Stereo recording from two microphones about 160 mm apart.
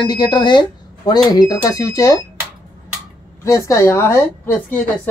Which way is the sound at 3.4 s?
20° left (ahead or behind).